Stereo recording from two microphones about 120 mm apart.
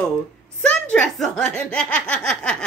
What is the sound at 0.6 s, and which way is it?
Speech, 10° left (ahead or behind).